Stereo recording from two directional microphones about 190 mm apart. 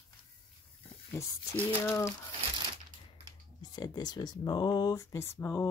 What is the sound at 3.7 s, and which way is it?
Speech, 20° left (ahead or behind).